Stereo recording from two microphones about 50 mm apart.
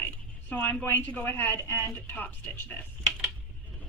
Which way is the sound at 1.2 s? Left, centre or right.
Left.